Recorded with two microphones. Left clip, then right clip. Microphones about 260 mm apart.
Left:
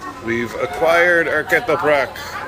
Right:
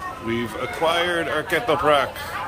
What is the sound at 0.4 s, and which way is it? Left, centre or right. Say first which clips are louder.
Speech: left 5 dB; centre.